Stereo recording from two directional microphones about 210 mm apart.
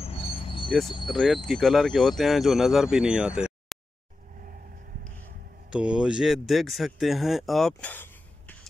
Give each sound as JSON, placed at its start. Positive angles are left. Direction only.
{"t": 0.0, "sound": "cricket", "side_deg": 25}
{"t": 0.7, "sound": "speech", "side_deg": 0}
{"t": 5.7, "sound": "speech", "side_deg": -5}